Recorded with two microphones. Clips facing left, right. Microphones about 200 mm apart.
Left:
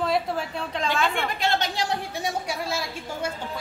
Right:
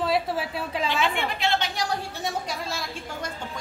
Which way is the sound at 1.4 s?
45° left (ahead or behind).